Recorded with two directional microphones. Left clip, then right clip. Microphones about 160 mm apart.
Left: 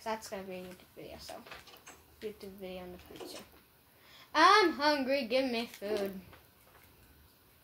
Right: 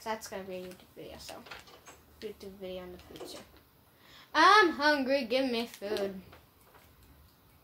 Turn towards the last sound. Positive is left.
turn(degrees=-25)  # may be behind; listen again after turning